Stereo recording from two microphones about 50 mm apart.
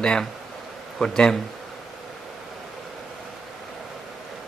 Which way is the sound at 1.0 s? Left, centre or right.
Centre.